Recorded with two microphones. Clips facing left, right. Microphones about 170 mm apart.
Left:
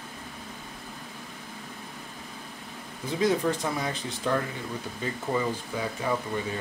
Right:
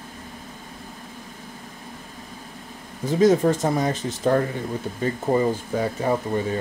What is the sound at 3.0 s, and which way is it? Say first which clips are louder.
Speech: right 8 dB; 45° right (ahead or behind).